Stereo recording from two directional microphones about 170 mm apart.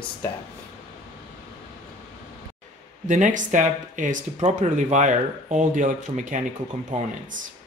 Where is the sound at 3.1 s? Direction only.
45° right (ahead or behind).